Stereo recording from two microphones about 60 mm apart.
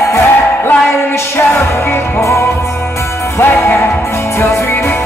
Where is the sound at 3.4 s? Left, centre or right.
Left.